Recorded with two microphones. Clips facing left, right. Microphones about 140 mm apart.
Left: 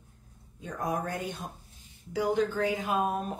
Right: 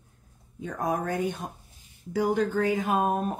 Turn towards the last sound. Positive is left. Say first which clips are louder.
# right 4 dB
turn(degrees=-45)  # may be behind; listen again after turning